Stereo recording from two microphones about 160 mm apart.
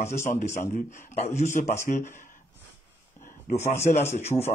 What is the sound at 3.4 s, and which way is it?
Speech, 45° left (ahead or behind).